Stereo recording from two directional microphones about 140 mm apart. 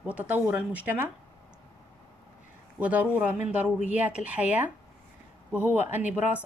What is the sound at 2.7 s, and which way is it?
A woman's voice, 10° right (ahead or behind).